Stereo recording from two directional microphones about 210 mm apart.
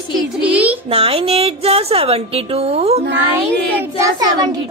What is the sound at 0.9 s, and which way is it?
A child's voice, 25° right (ahead or behind).